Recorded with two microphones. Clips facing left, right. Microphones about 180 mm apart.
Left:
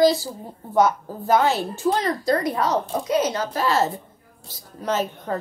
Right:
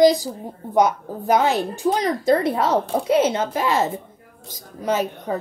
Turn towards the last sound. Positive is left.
turn(degrees=-10)  # may be behind; listen again after turning